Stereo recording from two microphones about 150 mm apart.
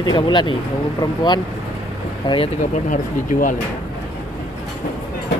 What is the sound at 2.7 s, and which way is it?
Speech, 60° left (ahead or behind).